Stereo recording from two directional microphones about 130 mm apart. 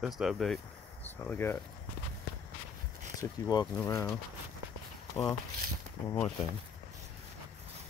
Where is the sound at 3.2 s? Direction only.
35° left (ahead or behind).